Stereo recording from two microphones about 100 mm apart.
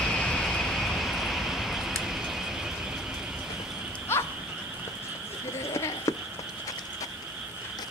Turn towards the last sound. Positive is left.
turn(degrees=30)  # may be behind; listen again after turning